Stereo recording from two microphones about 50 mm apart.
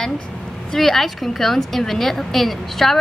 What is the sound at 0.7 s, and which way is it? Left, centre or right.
A woman's voice, centre.